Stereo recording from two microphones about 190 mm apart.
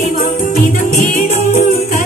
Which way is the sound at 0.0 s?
45° left (ahead or behind).